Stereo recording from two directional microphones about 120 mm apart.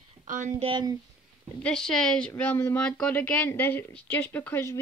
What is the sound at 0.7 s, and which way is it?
Speech, 40° right (ahead or behind).